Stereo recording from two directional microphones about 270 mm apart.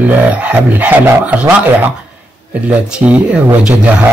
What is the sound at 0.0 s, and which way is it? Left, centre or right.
Speech, centre.